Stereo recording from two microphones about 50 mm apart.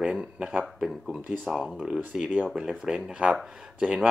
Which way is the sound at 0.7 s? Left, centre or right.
Centre.